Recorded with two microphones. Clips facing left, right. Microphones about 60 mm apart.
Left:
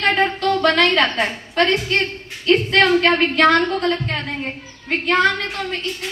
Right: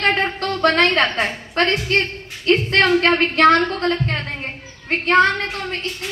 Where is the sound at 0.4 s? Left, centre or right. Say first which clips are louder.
Left 1 dB; right.